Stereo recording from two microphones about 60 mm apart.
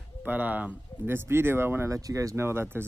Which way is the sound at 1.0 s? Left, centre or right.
Right.